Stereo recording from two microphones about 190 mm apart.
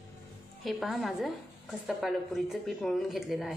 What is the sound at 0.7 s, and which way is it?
A woman's voice, centre (ahead or behind).